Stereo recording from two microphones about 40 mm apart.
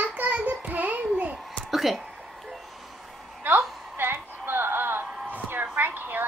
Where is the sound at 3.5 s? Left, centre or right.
Right.